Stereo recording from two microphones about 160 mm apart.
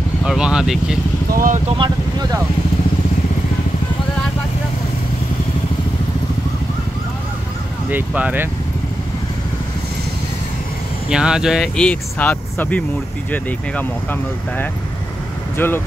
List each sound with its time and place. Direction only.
0.2 s speech: 5° right (ahead or behind)
1.3 s speech: 60° right (ahead or behind)
1.8 s speech: 25° right (ahead or behind)
7.9 s speech: 10° right (ahead or behind)
11.1 s speech: 5° right (ahead or behind)
15.5 s speech: 15° left (ahead or behind)